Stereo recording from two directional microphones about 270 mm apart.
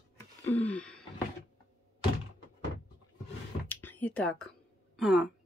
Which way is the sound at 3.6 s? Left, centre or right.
Centre.